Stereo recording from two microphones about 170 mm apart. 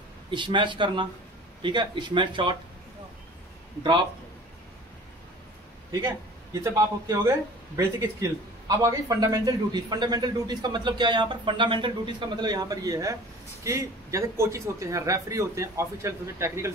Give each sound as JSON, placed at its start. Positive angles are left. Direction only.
{"t": 0.3, "sound": "speech", "side_deg": -30}
{"t": 6.6, "sound": "a man's voice", "side_deg": -20}